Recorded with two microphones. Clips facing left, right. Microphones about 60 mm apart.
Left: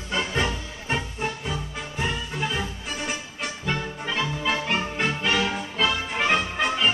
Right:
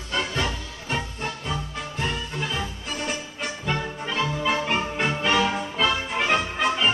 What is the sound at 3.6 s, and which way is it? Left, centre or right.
Music, centre.